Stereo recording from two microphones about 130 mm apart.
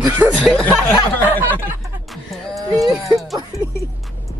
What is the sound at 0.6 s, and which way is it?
Speech, 10° left (ahead or behind).